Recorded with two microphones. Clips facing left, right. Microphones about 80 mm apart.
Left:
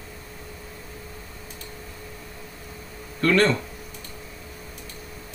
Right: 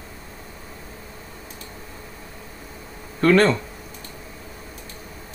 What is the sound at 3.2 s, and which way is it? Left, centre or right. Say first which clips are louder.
Speech: right 4 dB; right.